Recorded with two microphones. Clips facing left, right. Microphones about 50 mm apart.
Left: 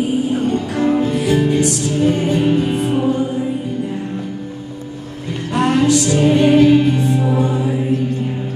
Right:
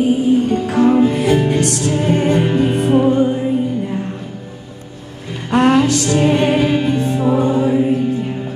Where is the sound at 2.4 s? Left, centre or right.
Right.